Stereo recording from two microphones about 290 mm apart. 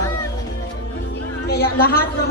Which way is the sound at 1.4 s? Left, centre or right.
Left.